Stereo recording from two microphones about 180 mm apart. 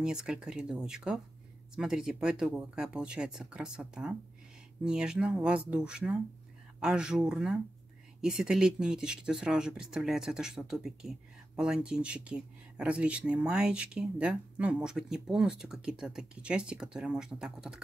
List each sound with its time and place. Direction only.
0.0 s speech: 5° right (ahead or behind)